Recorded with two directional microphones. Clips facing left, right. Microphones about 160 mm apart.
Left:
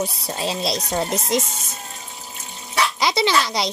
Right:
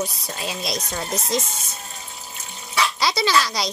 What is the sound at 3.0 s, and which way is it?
Speech, 20° left (ahead or behind).